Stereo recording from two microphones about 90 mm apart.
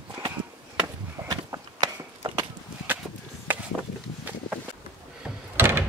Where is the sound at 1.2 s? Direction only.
50° right (ahead or behind).